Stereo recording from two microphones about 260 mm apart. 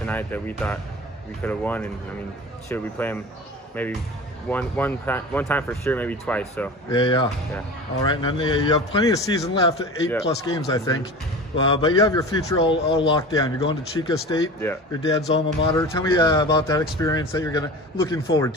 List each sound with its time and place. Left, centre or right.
0.0 s a man's voice: centre
7.0 s a man's voice: centre